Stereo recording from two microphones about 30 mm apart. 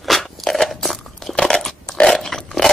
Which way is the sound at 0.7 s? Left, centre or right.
Centre.